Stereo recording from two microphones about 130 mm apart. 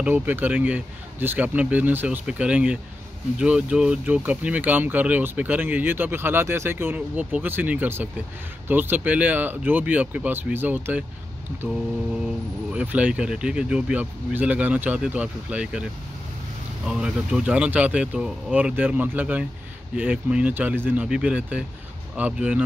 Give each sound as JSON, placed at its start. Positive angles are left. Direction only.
{"t": 0.0, "sound": "speech", "side_deg": -15}
{"t": 12.7, "sound": "speech", "side_deg": -10}
{"t": 16.8, "sound": "speech", "side_deg": -5}